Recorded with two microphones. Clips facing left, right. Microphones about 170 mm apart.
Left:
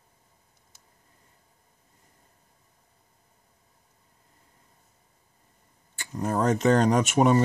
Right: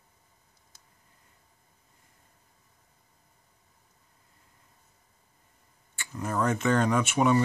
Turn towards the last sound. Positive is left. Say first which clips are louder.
# left 3 dB
turn(degrees=40)  # may be behind; listen again after turning